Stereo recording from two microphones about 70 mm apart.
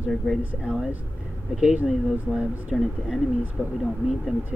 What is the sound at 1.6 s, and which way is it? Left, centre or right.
Speech, centre.